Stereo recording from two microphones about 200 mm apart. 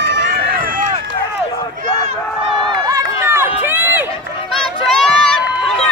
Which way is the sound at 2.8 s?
15° right (ahead or behind).